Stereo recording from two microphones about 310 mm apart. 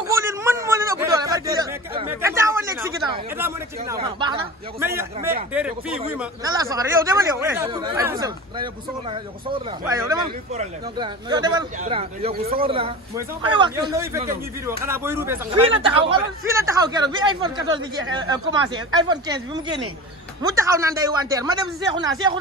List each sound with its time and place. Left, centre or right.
0.0 s a sound: centre
3.9 s a man's voice: centre
9.8 s a man's voice: centre